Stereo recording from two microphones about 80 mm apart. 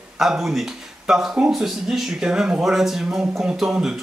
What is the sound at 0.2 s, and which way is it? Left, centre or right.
Speech, centre.